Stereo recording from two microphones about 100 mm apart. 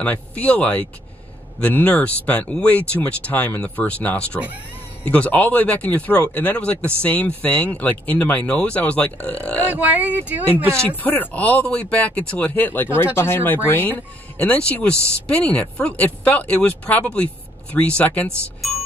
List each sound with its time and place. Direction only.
0.0 s speech: 15° left (ahead or behind)
9.7 s speech: 15° right (ahead or behind)
11.0 s speech: 15° left (ahead or behind)